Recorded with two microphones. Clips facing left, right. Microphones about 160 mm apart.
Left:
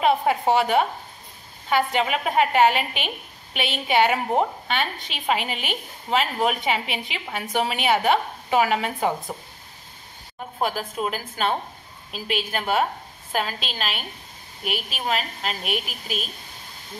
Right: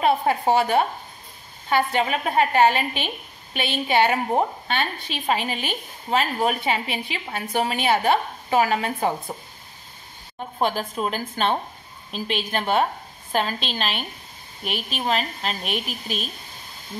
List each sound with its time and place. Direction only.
0.0 s a woman's voice: 15° left (ahead or behind)
10.6 s a woman's voice: 5° left (ahead or behind)